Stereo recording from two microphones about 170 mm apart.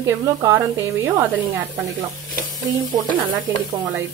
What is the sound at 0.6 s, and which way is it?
Speech, 15° right (ahead or behind).